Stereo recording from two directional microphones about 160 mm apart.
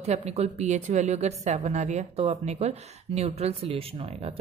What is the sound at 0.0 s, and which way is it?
Speech, 40° right (ahead or behind).